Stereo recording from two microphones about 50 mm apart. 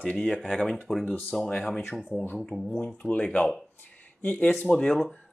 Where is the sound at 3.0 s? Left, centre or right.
Left.